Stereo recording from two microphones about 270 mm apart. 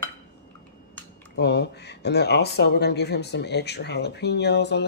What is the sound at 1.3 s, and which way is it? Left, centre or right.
Speech, left.